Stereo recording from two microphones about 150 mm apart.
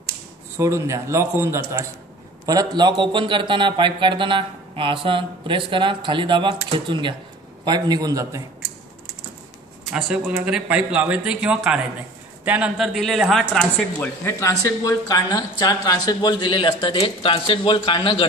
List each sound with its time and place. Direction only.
0.6 s a man's voice: 20° right (ahead or behind)
9.9 s speech: 5° right (ahead or behind)
13.9 s speech: 15° left (ahead or behind); by 18.2 s 35° left (ahead or behind)